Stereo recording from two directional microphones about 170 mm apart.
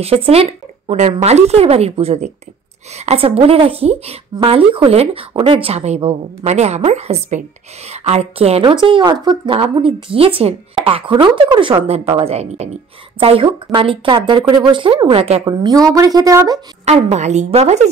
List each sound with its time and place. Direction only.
0.0 s a woman's voice: 35° right (ahead or behind)
15.4 s a woman's voice: 25° right (ahead or behind)
16.8 s a woman's voice: 40° right (ahead or behind)